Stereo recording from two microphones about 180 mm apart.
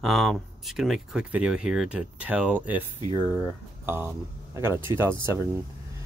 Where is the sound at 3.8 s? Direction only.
15° right (ahead or behind).